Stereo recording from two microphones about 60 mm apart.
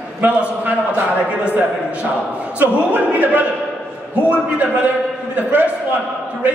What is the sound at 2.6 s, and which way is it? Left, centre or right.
Speech, right.